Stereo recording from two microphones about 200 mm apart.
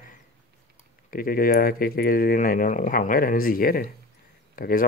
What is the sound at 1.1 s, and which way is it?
Speech, 45° left (ahead or behind).